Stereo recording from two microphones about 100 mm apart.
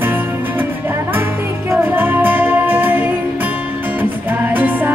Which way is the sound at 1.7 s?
20° right (ahead or behind).